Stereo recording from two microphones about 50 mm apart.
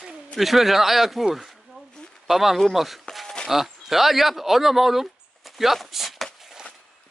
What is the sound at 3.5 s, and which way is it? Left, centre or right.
Speech, centre.